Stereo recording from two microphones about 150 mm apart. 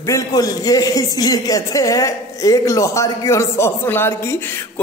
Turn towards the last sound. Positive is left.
turn(degrees=15)  # may be behind; listen again after turning